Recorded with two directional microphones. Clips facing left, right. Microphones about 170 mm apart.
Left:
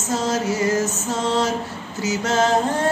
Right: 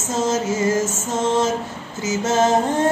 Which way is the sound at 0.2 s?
20° right (ahead or behind).